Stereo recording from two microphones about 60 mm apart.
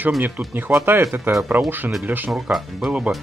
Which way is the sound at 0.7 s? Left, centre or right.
Right.